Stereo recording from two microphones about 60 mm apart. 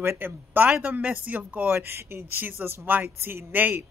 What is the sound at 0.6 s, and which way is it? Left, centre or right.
A woman's voice, centre.